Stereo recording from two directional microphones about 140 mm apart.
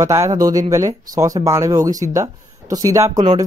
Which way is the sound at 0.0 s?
20° right (ahead or behind).